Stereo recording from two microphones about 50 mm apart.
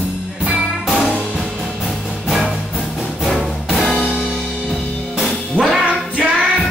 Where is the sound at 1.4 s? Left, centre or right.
Centre.